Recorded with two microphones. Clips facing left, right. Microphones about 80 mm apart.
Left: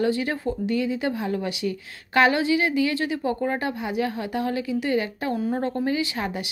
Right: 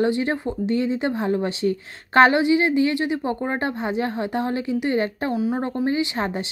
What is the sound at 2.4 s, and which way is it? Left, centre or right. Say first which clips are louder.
A woman's voice: right 3 dB; right.